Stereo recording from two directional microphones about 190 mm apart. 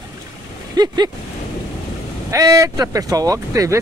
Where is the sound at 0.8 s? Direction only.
20° right (ahead or behind).